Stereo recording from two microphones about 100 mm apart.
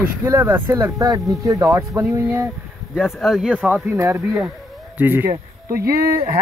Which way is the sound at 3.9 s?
30° right (ahead or behind).